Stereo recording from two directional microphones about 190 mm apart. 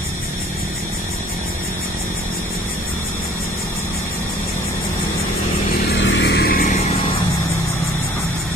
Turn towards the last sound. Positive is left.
turn(degrees=50)  # may be behind; listen again after turning